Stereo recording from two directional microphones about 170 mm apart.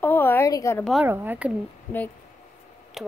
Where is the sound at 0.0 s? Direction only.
10° left (ahead or behind).